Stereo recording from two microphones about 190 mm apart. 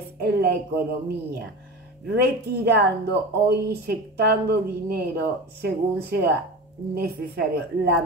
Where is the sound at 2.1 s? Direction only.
55° right (ahead or behind).